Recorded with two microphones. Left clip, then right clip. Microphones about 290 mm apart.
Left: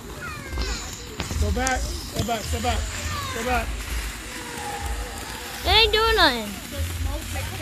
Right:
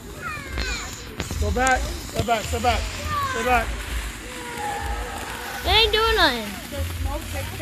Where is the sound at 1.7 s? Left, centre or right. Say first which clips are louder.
Right 3 dB; centre.